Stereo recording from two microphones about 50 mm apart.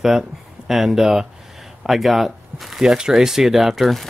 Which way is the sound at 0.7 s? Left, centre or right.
Centre.